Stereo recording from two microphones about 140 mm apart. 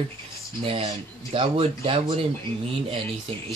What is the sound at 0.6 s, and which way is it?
Speech, 40° right (ahead or behind).